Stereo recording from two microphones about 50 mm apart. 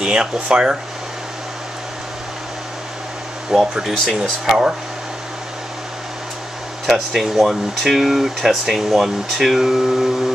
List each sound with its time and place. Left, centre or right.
0.0 s speech: centre
3.5 s speech: centre
6.9 s speech: centre